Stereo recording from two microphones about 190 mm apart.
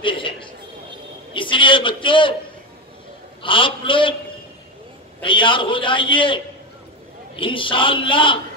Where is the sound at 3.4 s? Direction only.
25° left (ahead or behind).